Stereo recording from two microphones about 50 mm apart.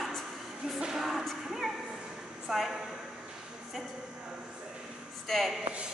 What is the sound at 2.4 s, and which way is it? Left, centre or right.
Speech, centre.